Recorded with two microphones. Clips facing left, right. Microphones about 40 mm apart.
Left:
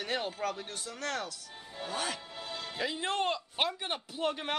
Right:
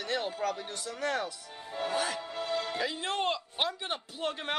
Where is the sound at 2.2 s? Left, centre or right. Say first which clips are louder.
Right 8 dB; right.